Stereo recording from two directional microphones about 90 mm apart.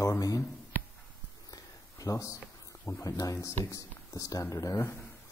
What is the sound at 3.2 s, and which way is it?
Speech, 35° left (ahead or behind).